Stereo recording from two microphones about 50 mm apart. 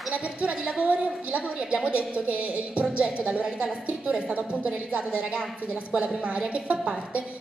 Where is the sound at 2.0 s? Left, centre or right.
Right.